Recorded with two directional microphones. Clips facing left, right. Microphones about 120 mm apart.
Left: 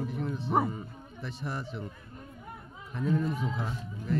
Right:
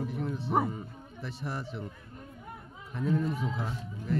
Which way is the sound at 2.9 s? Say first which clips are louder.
Even; 5° right (ahead or behind).